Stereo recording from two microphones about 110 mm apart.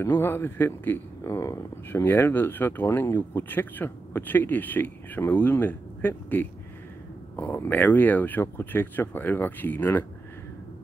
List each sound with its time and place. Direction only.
0.0 s speech: 20° left (ahead or behind)